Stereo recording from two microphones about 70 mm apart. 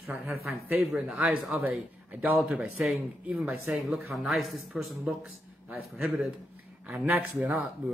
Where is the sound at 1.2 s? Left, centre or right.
Right.